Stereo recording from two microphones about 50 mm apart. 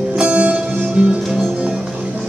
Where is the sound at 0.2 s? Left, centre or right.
Right.